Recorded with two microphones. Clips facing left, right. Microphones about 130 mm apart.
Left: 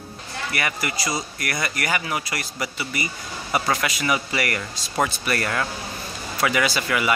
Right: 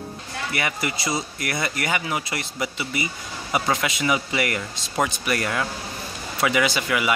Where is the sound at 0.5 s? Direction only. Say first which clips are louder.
Even; 20° right (ahead or behind).